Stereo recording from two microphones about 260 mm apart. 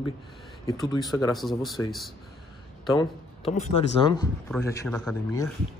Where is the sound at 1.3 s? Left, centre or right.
Centre.